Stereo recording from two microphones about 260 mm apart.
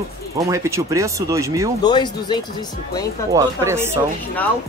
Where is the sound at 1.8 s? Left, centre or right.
Centre.